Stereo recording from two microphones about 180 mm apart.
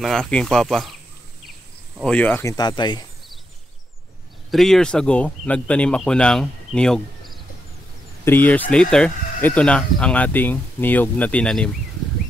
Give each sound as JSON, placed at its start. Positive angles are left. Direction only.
{"t": 0.0, "sound": "speech", "side_deg": 5}
{"t": 2.0, "sound": "speech", "side_deg": 10}
{"t": 2.5, "sound": "speech", "side_deg": 25}
{"t": 4.5, "sound": "speech", "side_deg": 0}